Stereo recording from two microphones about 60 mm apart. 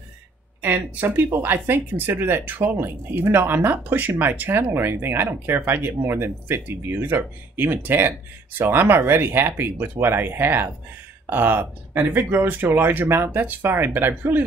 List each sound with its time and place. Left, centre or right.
0.6 s speech: right